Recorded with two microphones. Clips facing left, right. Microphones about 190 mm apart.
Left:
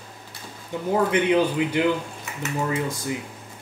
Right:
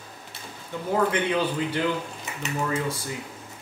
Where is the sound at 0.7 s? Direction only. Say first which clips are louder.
Left 3 dB; 15° left (ahead or behind).